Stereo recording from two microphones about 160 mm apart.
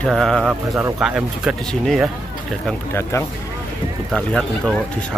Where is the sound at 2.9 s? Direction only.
15° left (ahead or behind).